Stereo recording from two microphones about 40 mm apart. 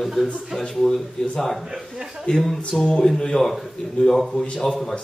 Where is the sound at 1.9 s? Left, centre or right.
Centre.